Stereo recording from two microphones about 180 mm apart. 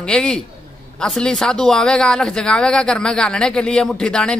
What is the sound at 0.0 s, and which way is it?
Speech, 5° left (ahead or behind).